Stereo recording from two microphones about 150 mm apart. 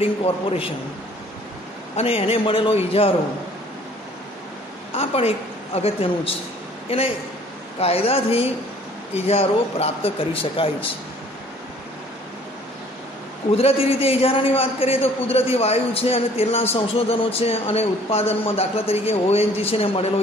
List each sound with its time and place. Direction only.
0.2 s a man's voice: 40° left (ahead or behind)
2.0 s a man's voice: 40° left (ahead or behind)
4.9 s a man's voice: 40° left (ahead or behind)
13.5 s a man's voice: 40° left (ahead or behind)